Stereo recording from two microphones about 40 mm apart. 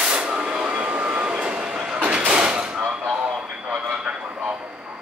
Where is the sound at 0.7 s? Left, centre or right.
Right; by 2.0 s centre.